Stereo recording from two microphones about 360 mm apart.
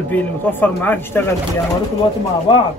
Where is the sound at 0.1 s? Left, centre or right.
Centre.